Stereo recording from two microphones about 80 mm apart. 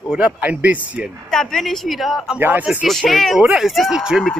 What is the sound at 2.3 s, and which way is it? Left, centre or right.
Speech, right.